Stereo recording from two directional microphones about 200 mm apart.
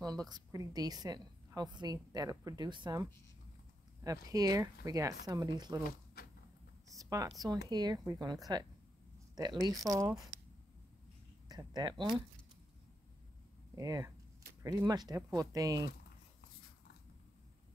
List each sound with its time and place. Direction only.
0.0 s a woman's voice: 20° right (ahead or behind)
6.9 s a woman's voice: 15° right (ahead or behind)
11.4 s speech: 20° right (ahead or behind)
13.7 s a woman's voice: 15° right (ahead or behind)